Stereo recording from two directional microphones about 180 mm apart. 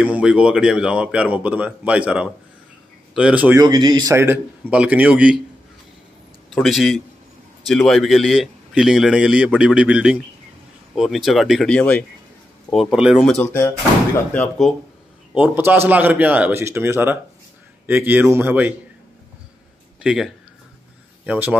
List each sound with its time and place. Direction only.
0.0 s speech: 5° right (ahead or behind)
3.6 s speech: 25° right (ahead or behind); by 5.4 s 5° right (ahead or behind)
6.5 s a man's voice: centre (ahead or behind)
12.9 s a man's voice: 5° right (ahead or behind)
13.2 s speech: 10° left (ahead or behind)
15.3 s speech: 10° right (ahead or behind)
20.0 s speech: 5° right (ahead or behind)
21.3 s speech: 10° right (ahead or behind)